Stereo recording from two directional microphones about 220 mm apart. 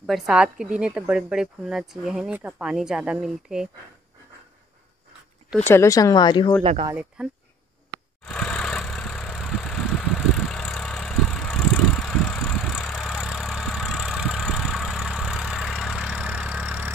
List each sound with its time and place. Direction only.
0.0 s a woman's voice: 5° right (ahead or behind)
5.7 s speech: 15° left (ahead or behind)
6.6 s speech: 30° right (ahead or behind)
6.9 s a woman's voice: 5° right (ahead or behind)
8.2 s vehicle: 5° left (ahead or behind)